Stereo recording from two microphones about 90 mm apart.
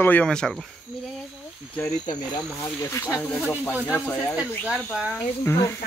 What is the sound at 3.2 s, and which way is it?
Speech, 10° left (ahead or behind).